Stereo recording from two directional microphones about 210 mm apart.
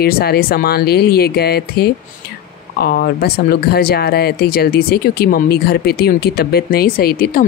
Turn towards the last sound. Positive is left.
turn(degrees=45)  # may be behind; listen again after turning